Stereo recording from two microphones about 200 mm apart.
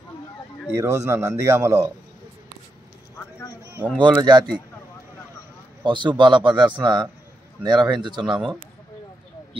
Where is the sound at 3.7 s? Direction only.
10° right (ahead or behind).